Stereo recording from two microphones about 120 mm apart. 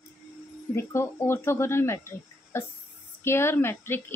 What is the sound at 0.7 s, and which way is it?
Speech, 20° left (ahead or behind).